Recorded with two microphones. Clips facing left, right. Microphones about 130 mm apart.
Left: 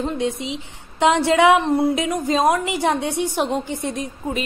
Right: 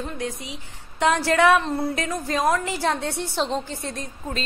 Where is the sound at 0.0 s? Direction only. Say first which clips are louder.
Left 7 dB; 25° left (ahead or behind).